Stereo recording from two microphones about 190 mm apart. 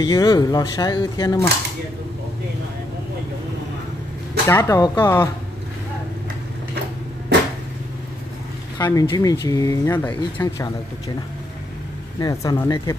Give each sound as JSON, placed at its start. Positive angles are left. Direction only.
{"t": 0.0, "sound": "speech", "side_deg": 20}
{"t": 4.5, "sound": "speech", "side_deg": 15}
{"t": 8.7, "sound": "speech", "side_deg": 20}
{"t": 12.2, "sound": "speech", "side_deg": 20}